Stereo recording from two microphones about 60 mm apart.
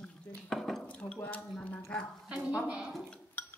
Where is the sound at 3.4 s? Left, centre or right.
Left.